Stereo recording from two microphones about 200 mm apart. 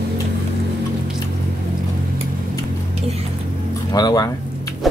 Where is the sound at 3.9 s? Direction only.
20° left (ahead or behind).